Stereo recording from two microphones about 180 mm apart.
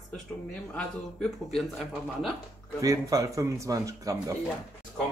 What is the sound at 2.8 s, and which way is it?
A man's voice, 20° right (ahead or behind).